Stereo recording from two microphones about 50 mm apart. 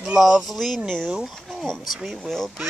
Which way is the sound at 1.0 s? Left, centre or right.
Centre.